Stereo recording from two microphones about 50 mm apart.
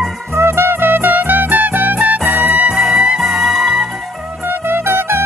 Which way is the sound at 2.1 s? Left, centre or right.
Right.